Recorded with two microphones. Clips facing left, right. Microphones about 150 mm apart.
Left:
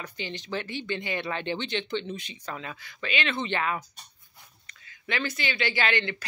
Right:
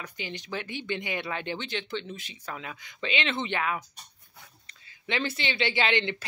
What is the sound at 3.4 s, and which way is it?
Speech, 5° right (ahead or behind).